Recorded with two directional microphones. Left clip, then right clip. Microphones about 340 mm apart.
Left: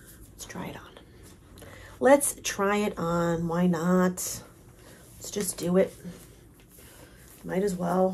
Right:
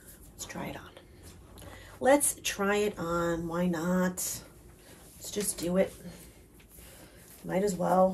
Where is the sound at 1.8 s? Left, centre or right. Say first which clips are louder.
Left 4 dB; centre.